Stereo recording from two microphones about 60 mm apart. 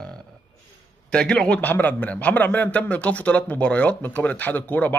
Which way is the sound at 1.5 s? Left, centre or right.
Left.